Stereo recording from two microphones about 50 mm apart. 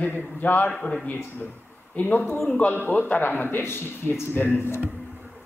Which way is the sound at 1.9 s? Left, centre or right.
Left.